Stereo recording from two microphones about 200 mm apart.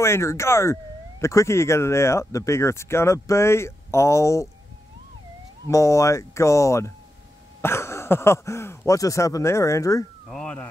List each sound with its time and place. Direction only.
0.0 s speech: 15° left (ahead or behind)
5.7 s speech: 15° left (ahead or behind)
10.2 s a sound: 5° left (ahead or behind)